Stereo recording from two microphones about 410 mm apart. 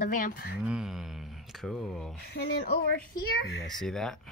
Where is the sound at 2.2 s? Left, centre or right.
Left.